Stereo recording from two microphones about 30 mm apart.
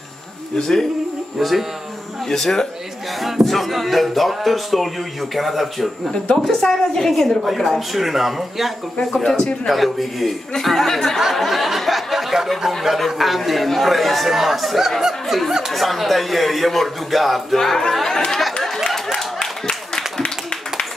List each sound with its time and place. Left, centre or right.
0.6 s a woman's voice: centre
1.4 s a man's voice: centre
2.2 s speech: centre
3.4 s a man's voice: centre
6.1 s a woman's voice: centre
9.0 s a woman's voice: centre
9.7 s a man's voice: centre
15.7 s a man's voice: centre
17.6 s a woman's voice: centre